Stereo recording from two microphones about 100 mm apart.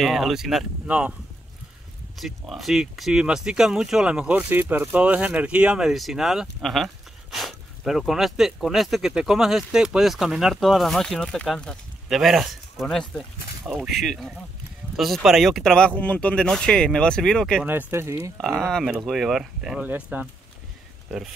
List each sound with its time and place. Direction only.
0.0 s speech: centre (ahead or behind)
2.1 s speech: centre (ahead or behind)
17.6 s speech: 20° right (ahead or behind)
18.9 s speech: centre (ahead or behind)
19.8 s speech: 15° right (ahead or behind)